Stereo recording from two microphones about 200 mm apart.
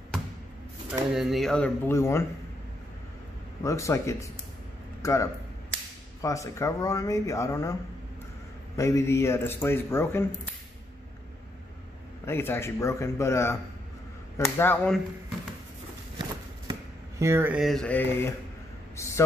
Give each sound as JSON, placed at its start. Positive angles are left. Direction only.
{"t": 1.1, "sound": "speech", "side_deg": 0}
{"t": 3.6, "sound": "a man's voice", "side_deg": 15}
{"t": 5.0, "sound": "a sound", "side_deg": 15}
{"t": 6.2, "sound": "a man's voice", "side_deg": 15}
{"t": 8.7, "sound": "a man's voice", "side_deg": 15}
{"t": 12.3, "sound": "a man's voice", "side_deg": 10}
{"t": 14.6, "sound": "a man's voice", "side_deg": 10}
{"t": 17.2, "sound": "speech", "side_deg": -10}